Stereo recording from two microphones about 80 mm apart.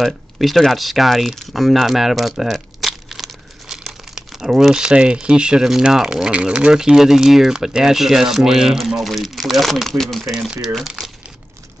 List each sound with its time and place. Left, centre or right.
0.0 s speech: centre
10.3 s speech: centre